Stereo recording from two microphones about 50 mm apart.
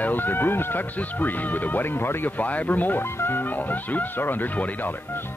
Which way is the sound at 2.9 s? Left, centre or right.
Left.